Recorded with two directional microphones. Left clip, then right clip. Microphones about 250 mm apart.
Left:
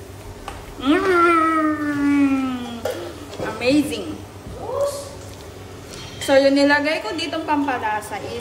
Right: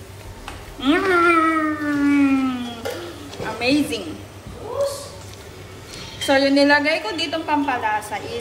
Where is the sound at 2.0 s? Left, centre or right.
Centre.